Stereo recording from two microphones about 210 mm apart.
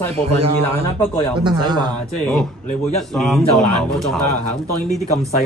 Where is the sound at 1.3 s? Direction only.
20° right (ahead or behind).